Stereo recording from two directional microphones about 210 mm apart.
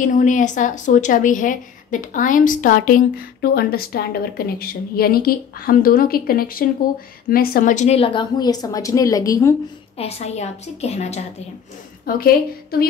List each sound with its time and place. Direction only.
0.0 s a woman's voice: 35° left (ahead or behind); by 9.6 s 15° left (ahead or behind)
9.9 s a woman's voice: 30° left (ahead or behind)
12.2 s a woman's voice: 45° left (ahead or behind)